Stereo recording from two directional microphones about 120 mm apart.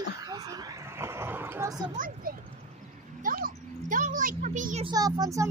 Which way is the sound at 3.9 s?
90° right.